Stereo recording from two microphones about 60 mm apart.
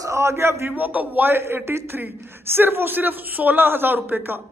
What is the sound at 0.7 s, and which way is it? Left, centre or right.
Speech, right.